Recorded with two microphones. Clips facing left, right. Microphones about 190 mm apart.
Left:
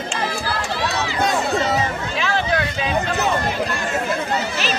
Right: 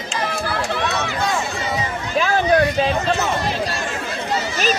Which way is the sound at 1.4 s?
60° left (ahead or behind).